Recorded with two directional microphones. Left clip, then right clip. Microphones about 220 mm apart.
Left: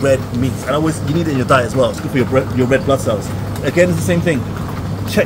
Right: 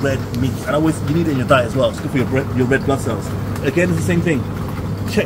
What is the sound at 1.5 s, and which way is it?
A man's voice, 20° left (ahead or behind).